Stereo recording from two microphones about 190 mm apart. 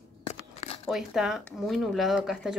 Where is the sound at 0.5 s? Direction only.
30° left (ahead or behind).